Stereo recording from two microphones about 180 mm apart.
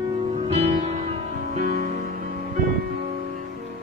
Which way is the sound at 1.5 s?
50° right (ahead or behind).